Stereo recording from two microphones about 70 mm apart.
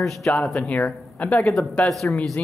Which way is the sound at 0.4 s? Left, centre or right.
Centre.